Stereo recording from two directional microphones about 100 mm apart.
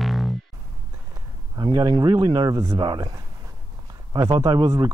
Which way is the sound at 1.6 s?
45° right (ahead or behind).